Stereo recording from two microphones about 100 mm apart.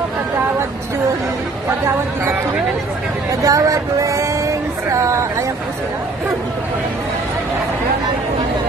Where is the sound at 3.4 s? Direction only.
35° right (ahead or behind).